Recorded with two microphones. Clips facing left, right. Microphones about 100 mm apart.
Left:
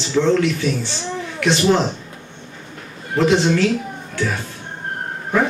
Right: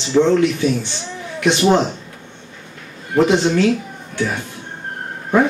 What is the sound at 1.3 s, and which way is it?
Speech, 20° right (ahead or behind).